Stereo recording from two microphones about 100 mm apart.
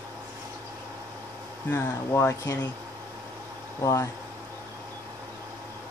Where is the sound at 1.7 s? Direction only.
25° left (ahead or behind).